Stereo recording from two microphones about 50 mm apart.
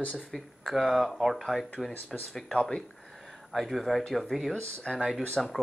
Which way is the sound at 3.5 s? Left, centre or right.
Centre.